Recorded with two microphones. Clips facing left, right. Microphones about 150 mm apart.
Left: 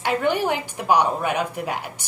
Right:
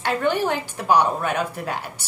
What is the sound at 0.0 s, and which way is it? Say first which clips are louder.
Speech: even; 10° left (ahead or behind).